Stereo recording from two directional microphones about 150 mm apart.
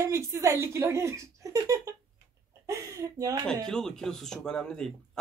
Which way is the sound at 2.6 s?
20° right (ahead or behind).